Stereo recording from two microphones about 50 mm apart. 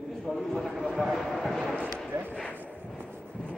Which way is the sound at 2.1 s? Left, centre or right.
Right.